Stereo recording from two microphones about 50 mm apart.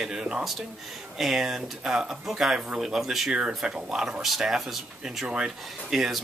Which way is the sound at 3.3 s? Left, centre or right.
Centre.